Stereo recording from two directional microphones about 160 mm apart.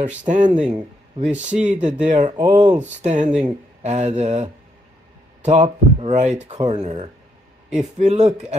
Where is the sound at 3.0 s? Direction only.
45° right (ahead or behind).